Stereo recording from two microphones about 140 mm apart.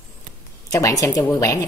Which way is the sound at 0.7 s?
25° left (ahead or behind).